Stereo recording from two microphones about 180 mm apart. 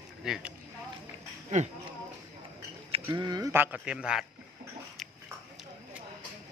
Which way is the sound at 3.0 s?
25° right (ahead or behind).